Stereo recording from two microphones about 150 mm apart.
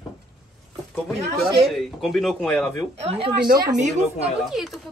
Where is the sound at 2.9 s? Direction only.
40° right (ahead or behind).